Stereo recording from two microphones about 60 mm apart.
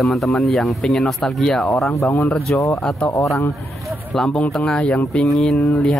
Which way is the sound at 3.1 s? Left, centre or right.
Left.